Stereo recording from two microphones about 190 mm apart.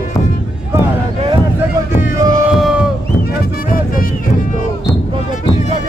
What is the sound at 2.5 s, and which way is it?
Sheep, 5° right (ahead or behind).